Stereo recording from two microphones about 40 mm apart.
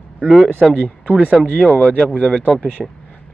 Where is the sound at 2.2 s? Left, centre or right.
Centre.